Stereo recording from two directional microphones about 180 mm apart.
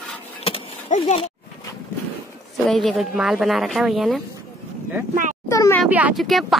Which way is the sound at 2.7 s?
Centre (ahead or behind).